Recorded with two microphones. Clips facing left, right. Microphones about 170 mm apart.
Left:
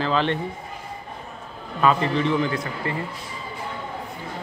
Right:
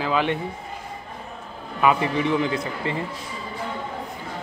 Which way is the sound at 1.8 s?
15° right (ahead or behind).